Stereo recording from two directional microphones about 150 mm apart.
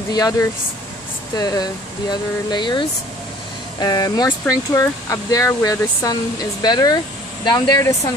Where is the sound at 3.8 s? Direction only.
25° left (ahead or behind).